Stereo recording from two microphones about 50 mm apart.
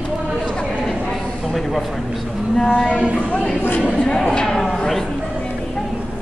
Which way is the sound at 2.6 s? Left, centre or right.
Centre.